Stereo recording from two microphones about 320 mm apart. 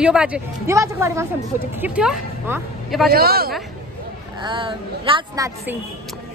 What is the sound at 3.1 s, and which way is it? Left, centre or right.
Speech, right.